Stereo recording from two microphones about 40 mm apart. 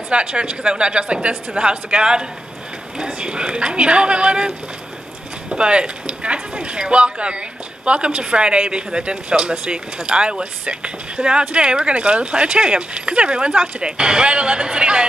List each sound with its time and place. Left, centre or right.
0.1 s speech: right
5.5 s speech: right